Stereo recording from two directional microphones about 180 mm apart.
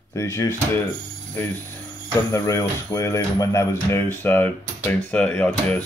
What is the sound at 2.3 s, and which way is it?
Speech, 15° left (ahead or behind).